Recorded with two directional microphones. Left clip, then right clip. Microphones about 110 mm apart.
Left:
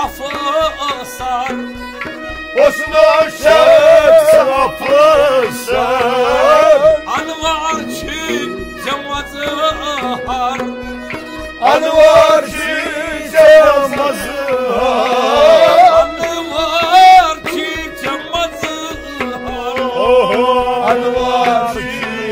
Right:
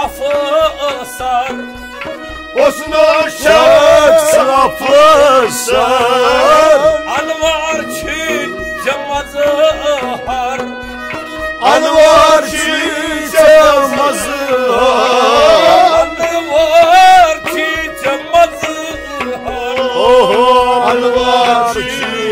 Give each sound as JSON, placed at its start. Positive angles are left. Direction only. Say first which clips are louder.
{"t": 0.0, "sound": "music", "louder": "right 4 dB", "side_deg": -20}
{"t": 2.6, "sound": "music", "louder": "even", "side_deg": -30}
{"t": 11.6, "sound": "music", "louder": "right 1 dB", "side_deg": -45}
{"t": 19.9, "sound": "chant", "louder": "right 3 dB", "side_deg": -50}